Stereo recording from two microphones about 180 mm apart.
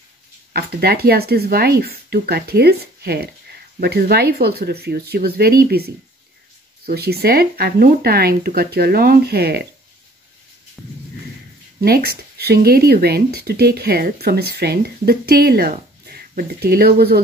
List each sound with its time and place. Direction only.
0.5 s speech: 60° right (ahead or behind)
10.8 s a sound: centre (ahead or behind)
11.8 s speech: 60° right (ahead or behind)